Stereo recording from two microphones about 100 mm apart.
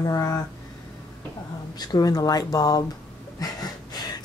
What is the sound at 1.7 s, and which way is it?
Speech, 40° left (ahead or behind).